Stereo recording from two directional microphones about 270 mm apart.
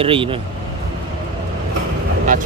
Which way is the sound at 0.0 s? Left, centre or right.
Centre.